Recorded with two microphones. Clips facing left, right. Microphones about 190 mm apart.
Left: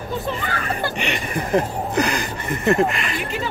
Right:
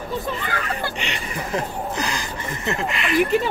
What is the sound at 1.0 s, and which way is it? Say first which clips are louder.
Speech: left 4 dB; 55° left (ahead or behind).